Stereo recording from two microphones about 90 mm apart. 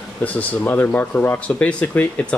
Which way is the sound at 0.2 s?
20° left (ahead or behind).